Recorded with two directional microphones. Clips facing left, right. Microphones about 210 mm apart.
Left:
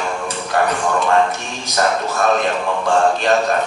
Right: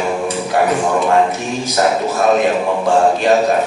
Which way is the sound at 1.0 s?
5° right (ahead or behind).